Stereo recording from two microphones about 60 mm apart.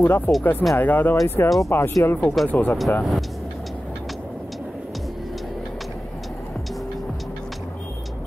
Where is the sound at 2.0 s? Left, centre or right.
Left.